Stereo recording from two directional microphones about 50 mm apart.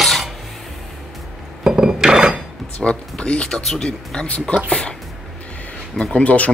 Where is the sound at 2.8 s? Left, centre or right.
Left.